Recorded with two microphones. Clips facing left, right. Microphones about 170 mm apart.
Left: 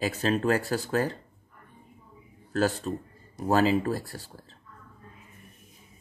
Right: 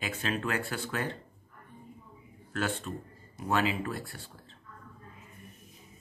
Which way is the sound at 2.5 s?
40° left (ahead or behind).